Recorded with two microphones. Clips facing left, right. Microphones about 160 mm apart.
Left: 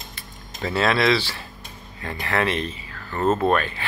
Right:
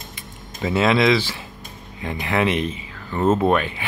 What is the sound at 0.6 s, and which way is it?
Speech, 15° right (ahead or behind).